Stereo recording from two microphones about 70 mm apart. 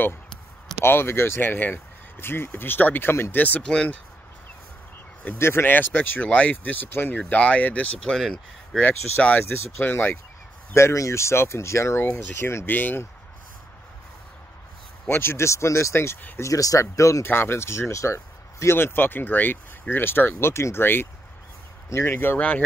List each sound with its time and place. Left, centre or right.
0.8 s speech: left
3.6 s speech: centre
5.4 s speech: left; by 8.8 s centre
8.8 s speech: left
9.4 s speech: left
10.7 s speech: left
12.6 s speech: left
15.0 s speech: left
16.3 s speech: left
17.3 s speech: left